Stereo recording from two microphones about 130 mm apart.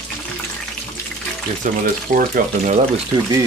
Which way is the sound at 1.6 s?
80° right.